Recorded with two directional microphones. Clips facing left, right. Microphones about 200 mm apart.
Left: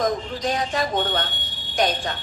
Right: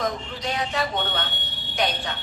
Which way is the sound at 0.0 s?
40° left (ahead or behind).